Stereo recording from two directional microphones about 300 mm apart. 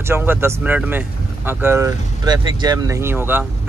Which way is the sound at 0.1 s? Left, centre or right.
Centre.